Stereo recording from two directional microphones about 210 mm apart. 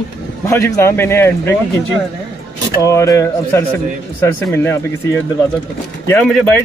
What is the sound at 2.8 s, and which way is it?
Speech, 15° left (ahead or behind).